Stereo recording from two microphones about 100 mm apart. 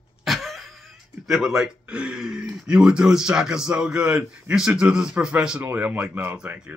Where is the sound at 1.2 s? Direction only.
5° right (ahead or behind).